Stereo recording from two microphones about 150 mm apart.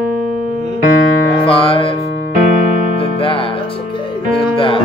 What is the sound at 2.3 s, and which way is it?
Music, 65° right (ahead or behind).